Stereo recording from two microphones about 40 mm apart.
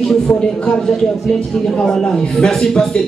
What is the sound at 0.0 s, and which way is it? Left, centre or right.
A man's voice, centre.